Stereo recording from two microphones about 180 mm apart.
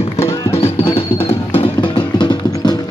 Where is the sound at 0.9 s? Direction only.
30° left (ahead or behind).